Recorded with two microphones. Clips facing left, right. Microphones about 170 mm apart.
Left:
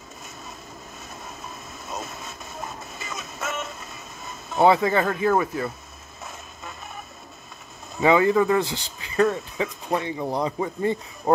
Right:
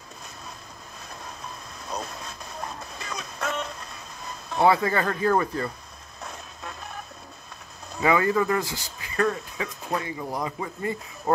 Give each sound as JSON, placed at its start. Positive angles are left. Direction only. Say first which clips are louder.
{"t": 1.9, "sound": "music", "louder": "right 1 dB", "side_deg": 5}
{"t": 4.6, "sound": "speech", "louder": "left 3 dB", "side_deg": 20}
{"t": 5.0, "sound": "speech", "louder": "left 2 dB", "side_deg": 10}
{"t": 8.0, "sound": "speech", "louder": "left 4 dB", "side_deg": 20}